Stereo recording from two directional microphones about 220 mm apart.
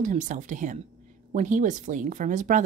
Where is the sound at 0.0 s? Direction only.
35° right (ahead or behind).